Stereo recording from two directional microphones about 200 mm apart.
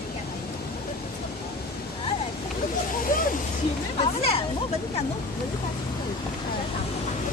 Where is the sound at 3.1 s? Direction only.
45° left (ahead or behind).